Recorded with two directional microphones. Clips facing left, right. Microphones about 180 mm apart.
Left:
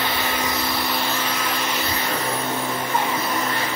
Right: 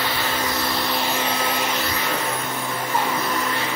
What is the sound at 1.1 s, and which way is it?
Vacuum cleaner, 25° right (ahead or behind).